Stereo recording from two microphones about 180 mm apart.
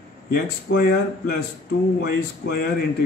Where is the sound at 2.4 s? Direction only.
55° left (ahead or behind).